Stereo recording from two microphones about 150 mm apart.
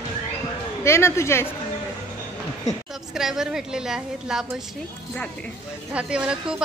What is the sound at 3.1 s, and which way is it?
A woman's voice, 5° right (ahead or behind).